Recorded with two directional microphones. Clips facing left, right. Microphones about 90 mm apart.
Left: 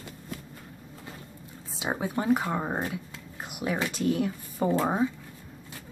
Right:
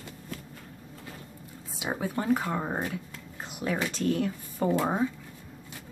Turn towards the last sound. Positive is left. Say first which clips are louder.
# left 1 dB
turn(degrees=10)  # may be behind; listen again after turning